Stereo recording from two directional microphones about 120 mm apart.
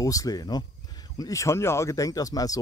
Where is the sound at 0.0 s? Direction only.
30° left (ahead or behind).